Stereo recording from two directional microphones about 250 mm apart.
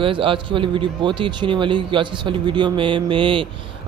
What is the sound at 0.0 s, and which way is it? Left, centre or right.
A man's voice, right.